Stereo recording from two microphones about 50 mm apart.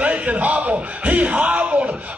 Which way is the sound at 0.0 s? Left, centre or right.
Right.